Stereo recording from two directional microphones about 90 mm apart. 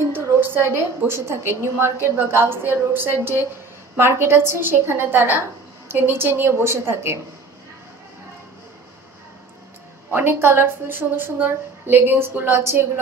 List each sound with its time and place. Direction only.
0.0 s a woman's voice: 30° right (ahead or behind)
10.1 s a woman's voice: 25° right (ahead or behind)